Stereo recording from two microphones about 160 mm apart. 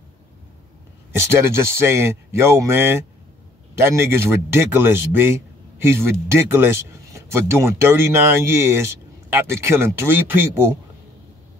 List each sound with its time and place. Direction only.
1.1 s a man's voice: 15° right (ahead or behind)